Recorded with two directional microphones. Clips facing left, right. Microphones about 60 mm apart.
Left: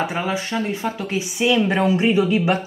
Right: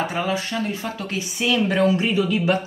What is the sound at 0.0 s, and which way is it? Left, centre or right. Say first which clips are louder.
Speech: left 1 dB; centre.